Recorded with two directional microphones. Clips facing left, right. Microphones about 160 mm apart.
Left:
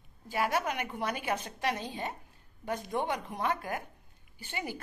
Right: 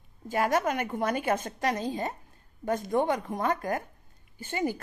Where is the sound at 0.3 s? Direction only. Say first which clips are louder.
Right 5 dB; 45° right (ahead or behind).